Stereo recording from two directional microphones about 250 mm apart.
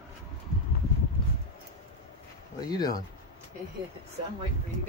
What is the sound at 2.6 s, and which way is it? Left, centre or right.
Speech, centre.